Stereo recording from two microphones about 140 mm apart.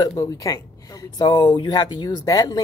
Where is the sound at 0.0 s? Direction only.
25° left (ahead or behind).